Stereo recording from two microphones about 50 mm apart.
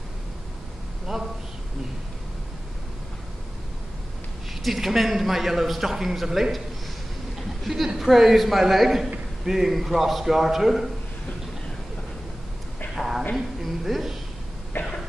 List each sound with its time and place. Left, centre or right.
1.0 s a sound: centre
4.6 s a man's voice: centre
7.6 s a woman's voice: centre
12.9 s a sound: centre
13.4 s a woman's voice: centre
14.7 s cough: left